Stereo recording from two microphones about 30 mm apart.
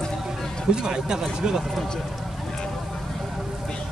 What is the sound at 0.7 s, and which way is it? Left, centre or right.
Speech, right.